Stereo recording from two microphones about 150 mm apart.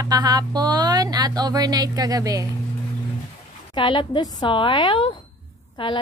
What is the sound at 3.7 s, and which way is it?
A woman's voice, 30° left (ahead or behind).